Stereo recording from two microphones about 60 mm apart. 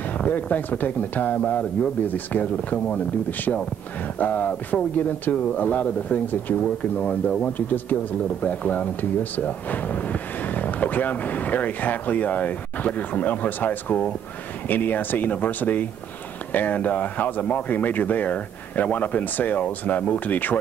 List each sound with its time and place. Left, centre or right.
0.2 s speech: left